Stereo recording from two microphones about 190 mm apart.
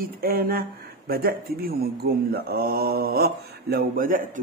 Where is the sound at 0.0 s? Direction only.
50° right (ahead or behind).